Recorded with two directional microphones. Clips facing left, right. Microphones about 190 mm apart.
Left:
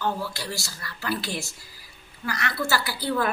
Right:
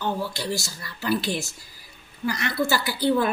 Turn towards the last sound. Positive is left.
turn(degrees=-20)  # may be behind; listen again after turning